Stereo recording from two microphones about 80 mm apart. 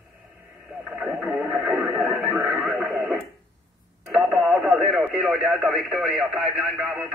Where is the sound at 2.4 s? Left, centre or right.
Centre.